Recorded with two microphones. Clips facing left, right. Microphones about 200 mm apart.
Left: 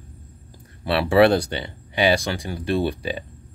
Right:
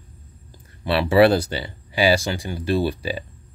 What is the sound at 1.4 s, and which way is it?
Speech, 5° right (ahead or behind).